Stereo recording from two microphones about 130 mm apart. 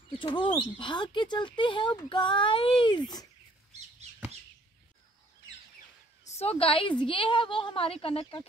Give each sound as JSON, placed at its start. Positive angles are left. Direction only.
{"t": 0.1, "sound": "speech", "side_deg": 40}
{"t": 6.2, "sound": "a woman's voice", "side_deg": 55}